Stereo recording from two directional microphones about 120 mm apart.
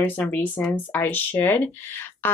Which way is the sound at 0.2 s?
15° left (ahead or behind).